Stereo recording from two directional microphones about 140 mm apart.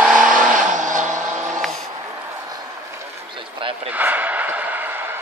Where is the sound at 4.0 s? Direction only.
10° right (ahead or behind).